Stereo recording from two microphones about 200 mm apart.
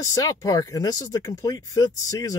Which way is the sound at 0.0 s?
15° left (ahead or behind).